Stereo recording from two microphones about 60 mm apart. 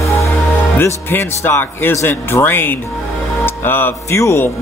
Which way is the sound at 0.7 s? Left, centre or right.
Left.